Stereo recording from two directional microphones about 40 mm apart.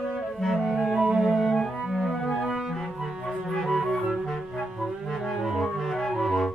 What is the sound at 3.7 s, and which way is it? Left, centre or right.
Music, centre.